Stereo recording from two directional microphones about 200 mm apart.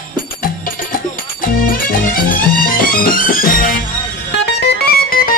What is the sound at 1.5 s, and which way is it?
Music, 45° left (ahead or behind).